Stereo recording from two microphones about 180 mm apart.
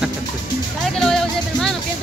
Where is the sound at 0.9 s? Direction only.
5° left (ahead or behind).